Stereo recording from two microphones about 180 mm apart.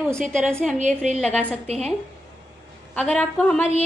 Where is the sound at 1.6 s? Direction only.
35° right (ahead or behind).